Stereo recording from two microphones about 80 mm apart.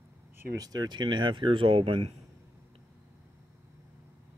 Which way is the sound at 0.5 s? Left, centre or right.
Right.